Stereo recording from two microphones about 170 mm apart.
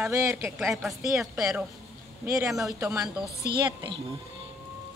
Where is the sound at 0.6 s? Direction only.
Centre (ahead or behind).